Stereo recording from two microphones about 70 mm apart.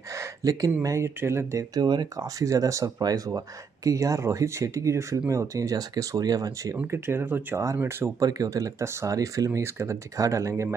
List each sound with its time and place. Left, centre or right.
0.1 s a sound: right
0.8 s speech: right
1.8 s speech: right
6.9 s speech: right
7.5 s speech: right
8.2 s speech: right